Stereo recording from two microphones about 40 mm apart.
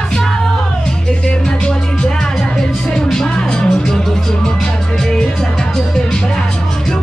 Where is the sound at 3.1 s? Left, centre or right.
Left.